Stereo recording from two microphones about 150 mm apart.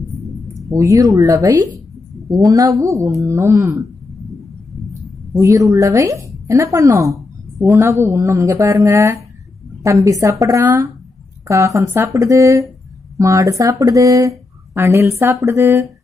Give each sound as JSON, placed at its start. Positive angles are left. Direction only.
{"t": 0.7, "sound": "speech", "side_deg": -20}
{"t": 5.3, "sound": "speech", "side_deg": -20}
{"t": 7.2, "sound": "a sound", "side_deg": 0}
{"t": 7.7, "sound": "speech", "side_deg": -20}
{"t": 11.4, "sound": "speech", "side_deg": -20}